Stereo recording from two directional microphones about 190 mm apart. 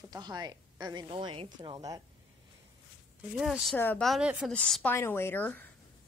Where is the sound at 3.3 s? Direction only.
Centre (ahead or behind).